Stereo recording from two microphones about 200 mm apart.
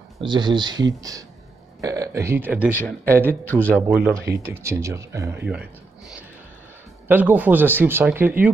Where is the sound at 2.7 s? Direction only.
10° left (ahead or behind).